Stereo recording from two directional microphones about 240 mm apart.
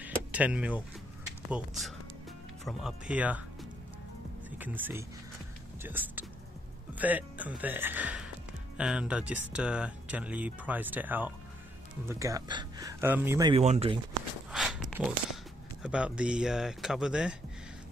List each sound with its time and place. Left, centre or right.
0.0 s vehicle: centre
1.5 s speech: centre
4.5 s speech: centre; by 13.9 s right
14.5 s a sound: centre
15.8 s speech: centre